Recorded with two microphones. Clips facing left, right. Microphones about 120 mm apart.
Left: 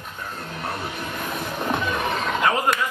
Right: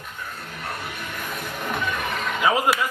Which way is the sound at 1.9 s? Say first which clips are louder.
Left 3 dB; 30° left (ahead or behind).